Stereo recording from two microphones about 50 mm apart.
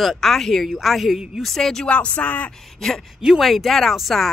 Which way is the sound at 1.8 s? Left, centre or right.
Left.